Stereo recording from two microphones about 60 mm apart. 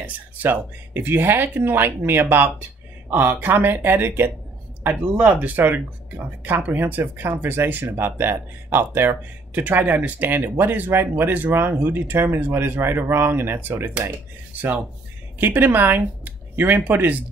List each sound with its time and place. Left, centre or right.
0.0 s speech: right
14.5 s a sound: right
15.3 s speech: right